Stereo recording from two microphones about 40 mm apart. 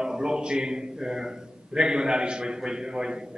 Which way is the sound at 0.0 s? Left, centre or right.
Centre.